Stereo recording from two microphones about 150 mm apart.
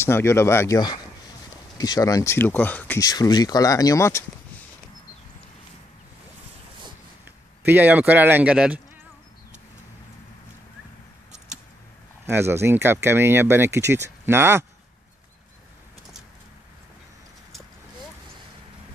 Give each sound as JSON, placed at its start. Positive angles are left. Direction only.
{"t": 0.0, "sound": "speech", "side_deg": 15}
{"t": 0.7, "sound": "speech", "side_deg": 30}
{"t": 3.0, "sound": "speech", "side_deg": 25}
{"t": 7.6, "sound": "speech", "side_deg": -10}
{"t": 12.3, "sound": "speech", "side_deg": -15}